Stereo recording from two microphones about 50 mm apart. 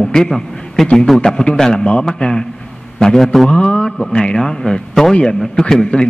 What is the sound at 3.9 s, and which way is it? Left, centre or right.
A man's voice, centre.